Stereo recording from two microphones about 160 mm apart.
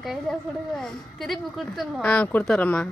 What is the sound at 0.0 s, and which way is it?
A woman's voice, centre (ahead or behind).